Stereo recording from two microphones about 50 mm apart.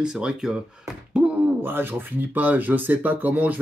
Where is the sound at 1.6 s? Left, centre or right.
Right.